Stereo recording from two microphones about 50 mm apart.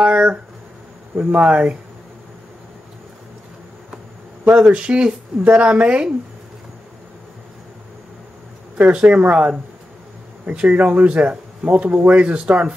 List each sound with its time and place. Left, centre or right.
0.0 s speech: right
4.5 s speech: right
4.7 s speech: right
8.9 s speech: right